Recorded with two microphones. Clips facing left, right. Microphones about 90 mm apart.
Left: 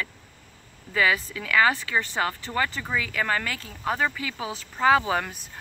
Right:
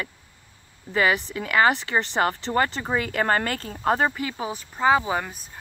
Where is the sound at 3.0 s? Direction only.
45° right (ahead or behind).